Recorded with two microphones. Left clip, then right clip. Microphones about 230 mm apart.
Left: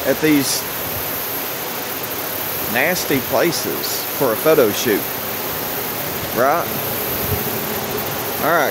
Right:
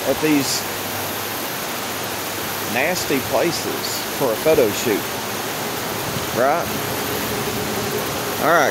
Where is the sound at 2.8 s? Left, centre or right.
Centre.